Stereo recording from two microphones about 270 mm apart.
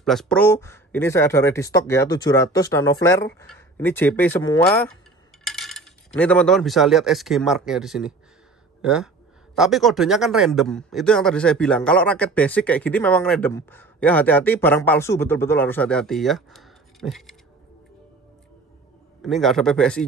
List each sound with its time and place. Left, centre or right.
0.0 s speech: centre
5.4 s cutlery: centre
8.8 s a man's voice: centre
19.2 s a man's voice: centre